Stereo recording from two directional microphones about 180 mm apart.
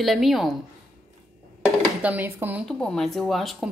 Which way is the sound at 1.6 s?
5° right (ahead or behind).